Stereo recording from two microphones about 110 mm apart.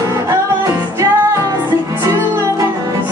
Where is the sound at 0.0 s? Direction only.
30° right (ahead or behind).